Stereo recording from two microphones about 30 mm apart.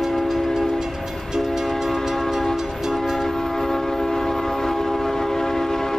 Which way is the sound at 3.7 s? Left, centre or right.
Centre.